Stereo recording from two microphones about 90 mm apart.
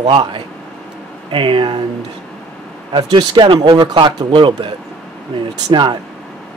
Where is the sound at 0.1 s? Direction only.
60° right (ahead or behind).